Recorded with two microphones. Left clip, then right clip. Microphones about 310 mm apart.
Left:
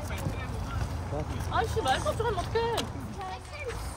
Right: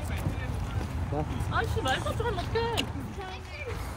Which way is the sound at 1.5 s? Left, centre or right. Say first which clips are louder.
Left 2 dB; left.